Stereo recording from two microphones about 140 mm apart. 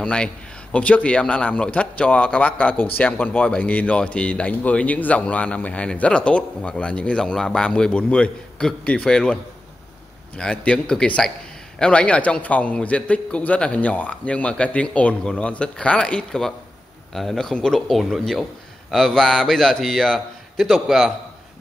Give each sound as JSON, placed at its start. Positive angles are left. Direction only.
{"t": 0.0, "sound": "a man's voice", "side_deg": 5}